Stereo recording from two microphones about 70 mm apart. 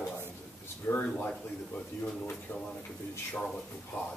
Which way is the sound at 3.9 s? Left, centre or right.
Left.